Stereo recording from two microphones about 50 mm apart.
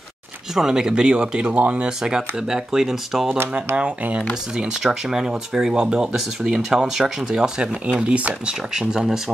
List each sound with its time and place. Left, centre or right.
0.6 s speech: centre
1.9 s speech: centre
3.7 s speech: right
4.8 s speech: centre
7.8 s speech: right
8.7 s speech: centre